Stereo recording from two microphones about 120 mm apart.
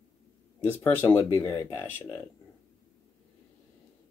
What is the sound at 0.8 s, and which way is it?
Speech, 15° left (ahead or behind).